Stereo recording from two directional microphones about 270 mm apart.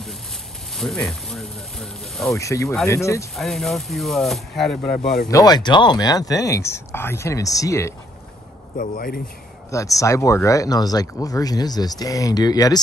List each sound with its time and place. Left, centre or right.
0.7 s speech: centre
2.3 s speech: centre
3.3 s speech: centre
5.3 s speech: centre
8.7 s speech: left
9.7 s speech: centre